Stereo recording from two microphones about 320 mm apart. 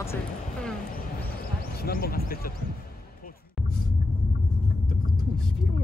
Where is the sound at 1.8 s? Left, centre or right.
Left.